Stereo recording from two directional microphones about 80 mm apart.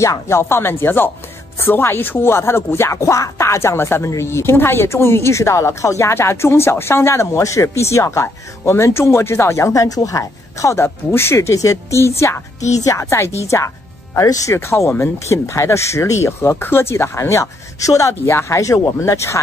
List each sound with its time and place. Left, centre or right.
0.0 s speech: left